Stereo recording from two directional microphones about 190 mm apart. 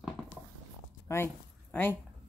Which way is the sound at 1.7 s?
10° left (ahead or behind).